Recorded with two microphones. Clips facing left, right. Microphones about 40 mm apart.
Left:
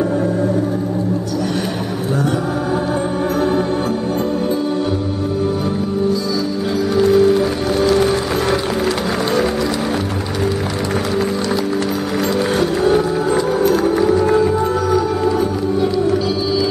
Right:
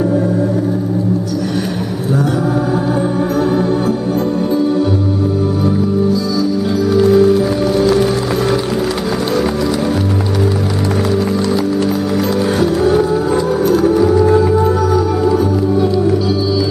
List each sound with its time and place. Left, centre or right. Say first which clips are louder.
7.0 s music: right 2 dB; centre
12.5 s music: right 3 dB; centre